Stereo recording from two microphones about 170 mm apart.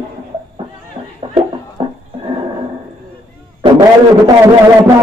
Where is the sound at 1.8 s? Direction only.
35° right (ahead or behind).